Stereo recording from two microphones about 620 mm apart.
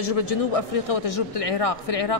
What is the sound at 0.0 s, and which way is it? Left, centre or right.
A woman's voice, left.